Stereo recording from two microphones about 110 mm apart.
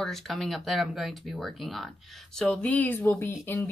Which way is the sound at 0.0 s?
5° left (ahead or behind).